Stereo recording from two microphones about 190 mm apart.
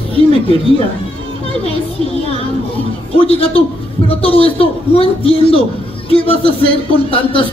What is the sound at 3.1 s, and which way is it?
Speech, 30° left (ahead or behind).